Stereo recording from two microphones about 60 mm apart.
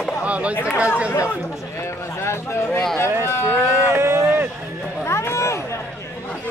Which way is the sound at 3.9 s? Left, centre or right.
Right.